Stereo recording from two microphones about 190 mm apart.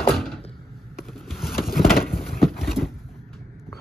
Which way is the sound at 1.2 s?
Centre (ahead or behind).